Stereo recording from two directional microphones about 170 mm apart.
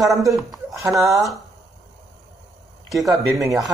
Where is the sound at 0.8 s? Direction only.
20° right (ahead or behind).